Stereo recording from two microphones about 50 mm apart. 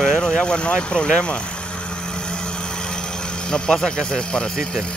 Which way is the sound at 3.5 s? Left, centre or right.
Centre.